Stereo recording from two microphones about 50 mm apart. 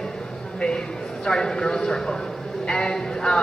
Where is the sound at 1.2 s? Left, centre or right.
Centre.